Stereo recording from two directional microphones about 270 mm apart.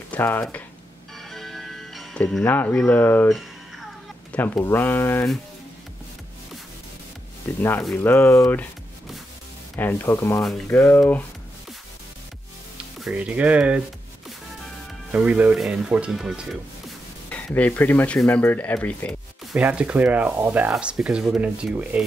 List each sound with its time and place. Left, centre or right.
0.1 s speech: centre
1.3 s music: centre
7.6 s speech: centre
9.8 s speech: centre
12.7 s speech: centre
15.0 s speech: centre